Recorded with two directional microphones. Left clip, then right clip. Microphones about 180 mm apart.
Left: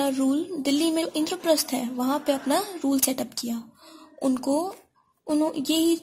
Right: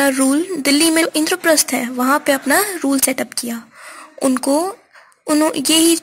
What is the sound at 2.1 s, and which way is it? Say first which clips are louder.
Speech: right 10 dB; 35° right (ahead or behind).